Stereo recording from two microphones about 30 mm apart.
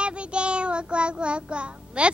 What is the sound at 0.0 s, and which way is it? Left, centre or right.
Child singing, right.